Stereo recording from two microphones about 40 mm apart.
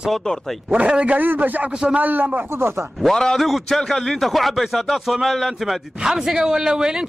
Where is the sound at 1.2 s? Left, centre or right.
Right.